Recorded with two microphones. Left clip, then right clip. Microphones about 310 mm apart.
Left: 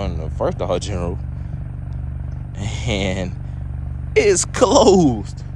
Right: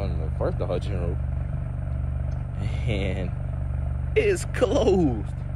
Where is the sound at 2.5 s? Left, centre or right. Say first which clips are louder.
Left 8 dB; centre.